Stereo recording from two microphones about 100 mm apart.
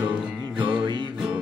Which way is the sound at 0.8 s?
50° right (ahead or behind).